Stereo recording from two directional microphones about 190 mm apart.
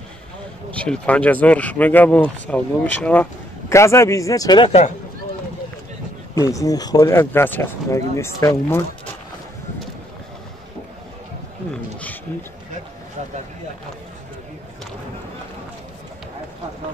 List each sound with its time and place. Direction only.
0.7 s speech: 5° left (ahead or behind); by 4.7 s 20° left (ahead or behind)
6.3 s speech: 15° left (ahead or behind)
11.7 s a sound: 5° left (ahead or behind)